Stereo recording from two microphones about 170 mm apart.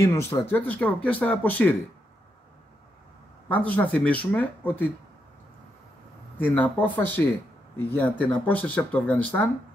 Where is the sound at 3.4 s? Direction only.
10° left (ahead or behind).